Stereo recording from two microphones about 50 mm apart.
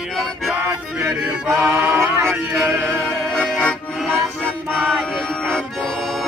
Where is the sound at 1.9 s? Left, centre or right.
Right.